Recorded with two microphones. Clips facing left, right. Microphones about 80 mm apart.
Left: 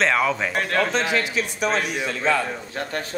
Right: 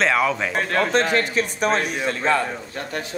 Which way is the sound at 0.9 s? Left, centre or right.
Right.